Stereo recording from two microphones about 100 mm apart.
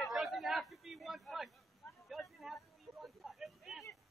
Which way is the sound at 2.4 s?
Centre (ahead or behind).